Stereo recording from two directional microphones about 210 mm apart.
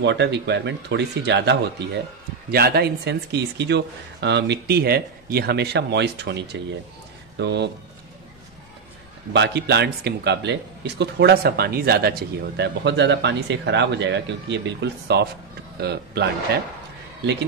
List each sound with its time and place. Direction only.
0.0 s speech: 55° right (ahead or behind)
9.3 s speech: 55° right (ahead or behind)